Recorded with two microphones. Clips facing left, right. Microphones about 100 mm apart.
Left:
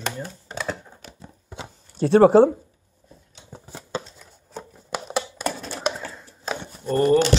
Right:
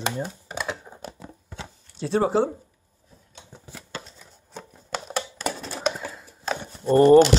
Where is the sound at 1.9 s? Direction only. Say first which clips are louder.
Left 8 dB; 60° left (ahead or behind).